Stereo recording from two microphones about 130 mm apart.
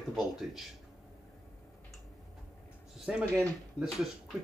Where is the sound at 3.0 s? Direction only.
5° right (ahead or behind).